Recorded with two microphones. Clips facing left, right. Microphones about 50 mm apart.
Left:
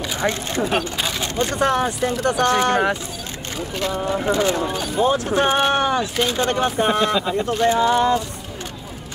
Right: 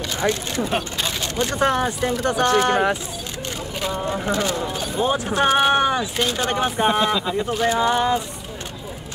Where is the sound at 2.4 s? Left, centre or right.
Left.